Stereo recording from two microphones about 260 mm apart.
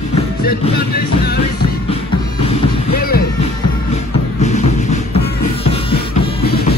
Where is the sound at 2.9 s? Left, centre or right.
Left.